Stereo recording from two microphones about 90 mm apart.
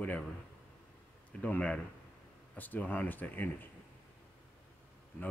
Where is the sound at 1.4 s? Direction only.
15° left (ahead or behind).